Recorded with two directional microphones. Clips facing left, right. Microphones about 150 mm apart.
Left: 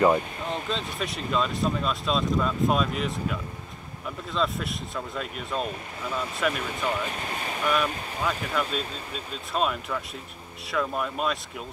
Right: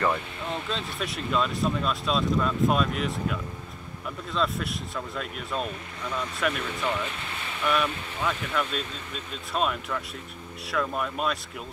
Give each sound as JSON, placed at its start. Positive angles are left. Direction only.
{"t": 0.7, "sound": "speech", "side_deg": 0}
{"t": 7.1, "sound": "speech", "side_deg": 40}
{"t": 7.6, "sound": "speech", "side_deg": 10}